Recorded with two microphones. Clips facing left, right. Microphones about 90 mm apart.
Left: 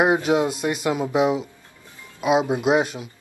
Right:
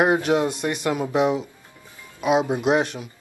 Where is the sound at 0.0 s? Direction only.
15° left (ahead or behind).